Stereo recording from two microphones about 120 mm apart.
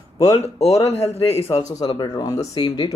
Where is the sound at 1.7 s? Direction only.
35° left (ahead or behind).